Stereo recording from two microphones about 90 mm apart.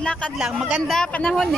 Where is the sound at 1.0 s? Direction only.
15° left (ahead or behind).